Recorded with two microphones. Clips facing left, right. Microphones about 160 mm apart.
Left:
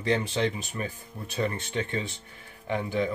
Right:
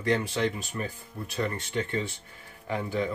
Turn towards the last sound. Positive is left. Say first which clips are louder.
# left 2 dB
turn(degrees=20)  # may be behind; listen again after turning